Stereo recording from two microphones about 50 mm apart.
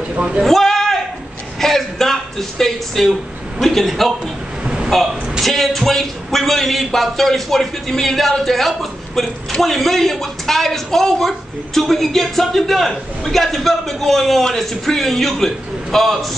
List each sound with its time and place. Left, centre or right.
0.1 s speech: right
0.4 s a sound: centre
3.6 s speech: centre